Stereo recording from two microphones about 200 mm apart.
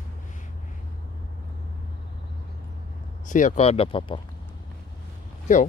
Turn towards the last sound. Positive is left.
turn(degrees=40)  # may be behind; listen again after turning